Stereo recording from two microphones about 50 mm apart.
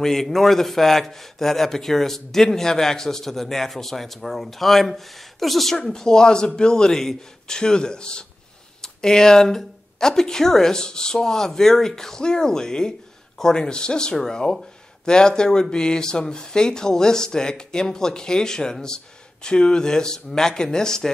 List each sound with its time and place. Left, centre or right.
0.0 s a man's voice: centre